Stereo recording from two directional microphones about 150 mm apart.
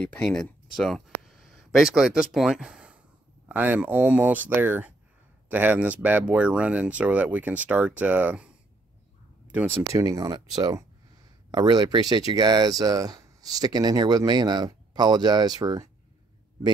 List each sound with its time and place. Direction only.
0.0 s speech: 10° left (ahead or behind); by 9.8 s 10° right (ahead or behind)
9.9 s speech: 25° right (ahead or behind)